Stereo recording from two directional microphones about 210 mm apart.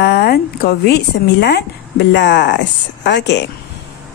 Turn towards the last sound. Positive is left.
turn(degrees=55)  # may be behind; listen again after turning